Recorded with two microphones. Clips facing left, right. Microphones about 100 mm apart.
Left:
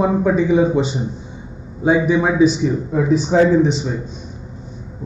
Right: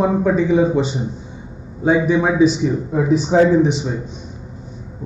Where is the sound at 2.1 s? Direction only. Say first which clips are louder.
Even; centre (ahead or behind).